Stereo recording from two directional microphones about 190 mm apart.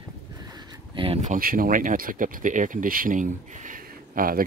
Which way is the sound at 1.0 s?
35° right (ahead or behind).